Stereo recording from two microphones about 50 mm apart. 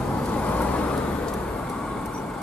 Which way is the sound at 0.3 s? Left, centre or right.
Left.